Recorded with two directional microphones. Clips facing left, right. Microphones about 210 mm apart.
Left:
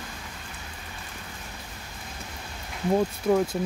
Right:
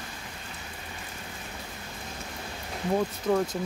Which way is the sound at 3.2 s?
10° left (ahead or behind).